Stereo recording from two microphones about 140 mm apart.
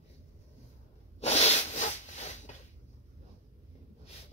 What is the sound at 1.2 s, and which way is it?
Rub, 50° left (ahead or behind).